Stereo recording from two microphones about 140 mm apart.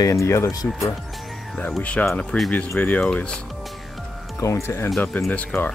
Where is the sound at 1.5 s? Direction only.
10° left (ahead or behind).